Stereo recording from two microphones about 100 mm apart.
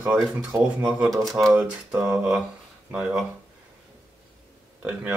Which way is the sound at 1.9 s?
35° right (ahead or behind).